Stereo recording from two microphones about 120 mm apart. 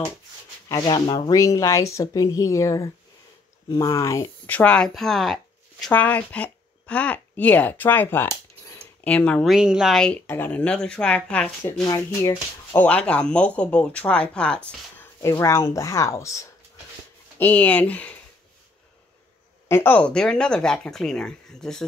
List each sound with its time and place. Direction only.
0.8 s speech: 40° left (ahead or behind)
1.3 s speech: 30° left (ahead or behind)
4.5 s speech: 10° left (ahead or behind)
5.9 s speech: 15° left (ahead or behind)
9.0 s speech: 10° left (ahead or behind)
9.5 s speech: 5° right (ahead or behind)
10.2 s speech: 20° left (ahead or behind)
11.8 s speech: 30° left (ahead or behind)
12.7 s speech: 10° left (ahead or behind)
15.2 s speech: 25° left (ahead or behind)
17.4 s speech: 15° left (ahead or behind)
19.7 s speech: 15° left (ahead or behind)